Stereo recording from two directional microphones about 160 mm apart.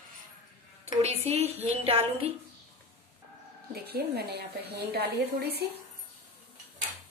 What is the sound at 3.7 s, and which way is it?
A woman's voice, 85° right.